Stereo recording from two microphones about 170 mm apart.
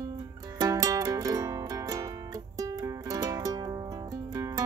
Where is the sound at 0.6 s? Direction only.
20° right (ahead or behind).